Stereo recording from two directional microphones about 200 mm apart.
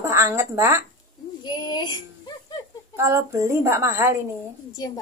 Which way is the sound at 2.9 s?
15° right (ahead or behind).